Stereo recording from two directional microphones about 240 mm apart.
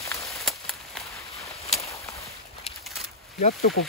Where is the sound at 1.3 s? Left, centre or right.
Left.